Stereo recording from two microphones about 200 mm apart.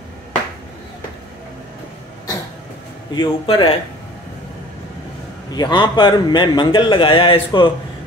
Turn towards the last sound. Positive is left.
turn(degrees=25)  # may be behind; listen again after turning